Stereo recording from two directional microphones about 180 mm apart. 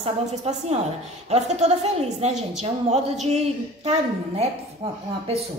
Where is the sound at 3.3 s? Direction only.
35° right (ahead or behind).